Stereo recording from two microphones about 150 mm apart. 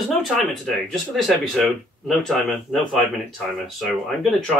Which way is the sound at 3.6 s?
Centre (ahead or behind).